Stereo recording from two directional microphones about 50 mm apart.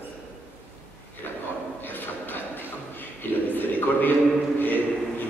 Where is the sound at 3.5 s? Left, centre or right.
Left.